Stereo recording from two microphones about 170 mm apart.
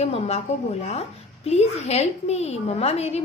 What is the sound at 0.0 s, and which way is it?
A woman's voice, 40° left (ahead or behind).